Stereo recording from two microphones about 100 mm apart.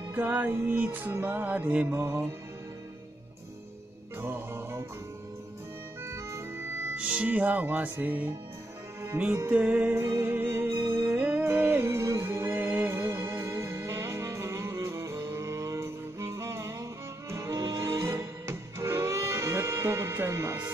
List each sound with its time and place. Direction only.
0.1 s music: 15° right (ahead or behind)
4.2 s music: 25° right (ahead or behind)
6.0 s music: 30° right (ahead or behind)
7.0 s music: 10° right (ahead or behind)
9.5 s music: 15° right (ahead or behind)
9.9 s music: 25° right (ahead or behind)
11.1 s music: 15° right (ahead or behind)